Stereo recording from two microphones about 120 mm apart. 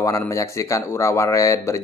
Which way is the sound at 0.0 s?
25° left (ahead or behind).